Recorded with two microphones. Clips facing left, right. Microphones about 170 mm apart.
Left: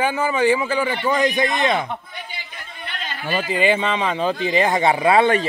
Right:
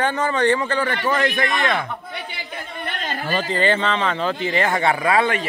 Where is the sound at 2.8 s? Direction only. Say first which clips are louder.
Right 2 dB; 45° right (ahead or behind).